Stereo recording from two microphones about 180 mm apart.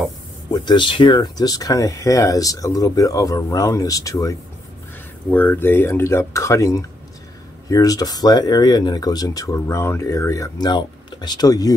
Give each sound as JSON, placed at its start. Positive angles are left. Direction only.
{"t": 0.5, "sound": "speech", "side_deg": 25}